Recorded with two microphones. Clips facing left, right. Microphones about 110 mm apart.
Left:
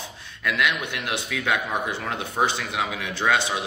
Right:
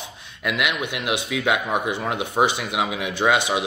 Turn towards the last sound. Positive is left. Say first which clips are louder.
# right 3 dB
turn(degrees=-15)  # may be behind; listen again after turning